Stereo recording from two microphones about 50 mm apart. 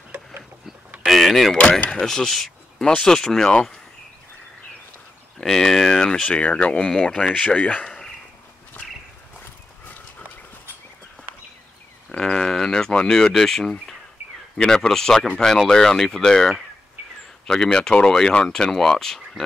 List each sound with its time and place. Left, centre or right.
1.0 s a sound: centre
1.6 s speech: left
5.4 s speech: centre; by 7.8 s left
12.1 s speech: centre
14.6 s speech: centre
14.9 s speech: centre